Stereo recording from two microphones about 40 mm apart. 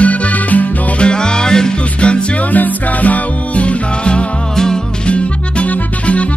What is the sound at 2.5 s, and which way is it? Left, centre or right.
Music, left.